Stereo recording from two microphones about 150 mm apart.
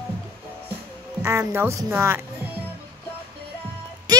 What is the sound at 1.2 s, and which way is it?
Speech, 15° right (ahead or behind).